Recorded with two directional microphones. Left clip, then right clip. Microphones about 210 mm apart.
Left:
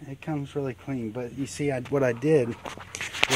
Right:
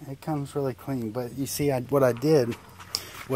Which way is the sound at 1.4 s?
40° right (ahead or behind).